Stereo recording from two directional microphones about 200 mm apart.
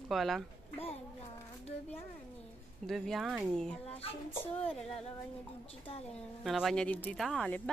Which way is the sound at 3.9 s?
30° left (ahead or behind).